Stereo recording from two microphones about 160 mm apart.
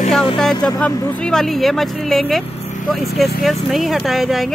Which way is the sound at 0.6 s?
5° left (ahead or behind).